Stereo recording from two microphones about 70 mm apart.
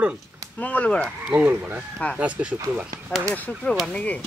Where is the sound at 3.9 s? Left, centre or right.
Centre.